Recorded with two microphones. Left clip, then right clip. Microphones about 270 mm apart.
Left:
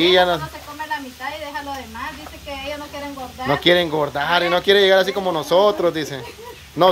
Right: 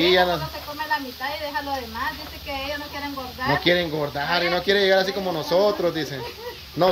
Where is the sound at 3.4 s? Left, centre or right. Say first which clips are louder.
Left 4 dB; centre.